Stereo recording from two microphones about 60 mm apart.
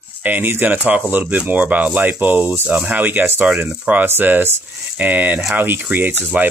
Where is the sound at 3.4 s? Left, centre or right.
Right.